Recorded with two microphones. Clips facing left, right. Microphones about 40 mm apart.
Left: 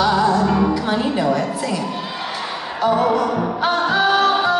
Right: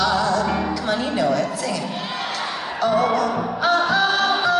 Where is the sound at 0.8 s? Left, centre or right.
Centre.